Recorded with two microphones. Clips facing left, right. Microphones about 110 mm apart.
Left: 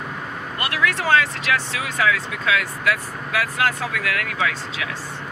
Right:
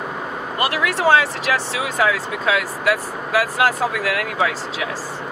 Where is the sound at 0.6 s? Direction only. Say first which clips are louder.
Right 5 dB; 10° right (ahead or behind).